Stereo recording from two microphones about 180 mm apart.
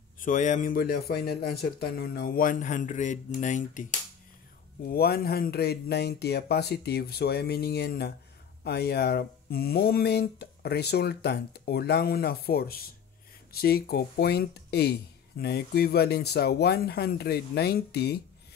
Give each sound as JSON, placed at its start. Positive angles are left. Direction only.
{"t": 0.2, "sound": "speech", "side_deg": 45}
{"t": 4.8, "sound": "speech", "side_deg": 60}